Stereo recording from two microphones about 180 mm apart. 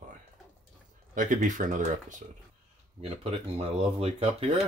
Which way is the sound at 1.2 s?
45° right (ahead or behind).